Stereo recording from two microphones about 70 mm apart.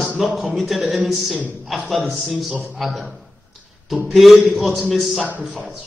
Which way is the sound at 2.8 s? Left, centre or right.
Centre.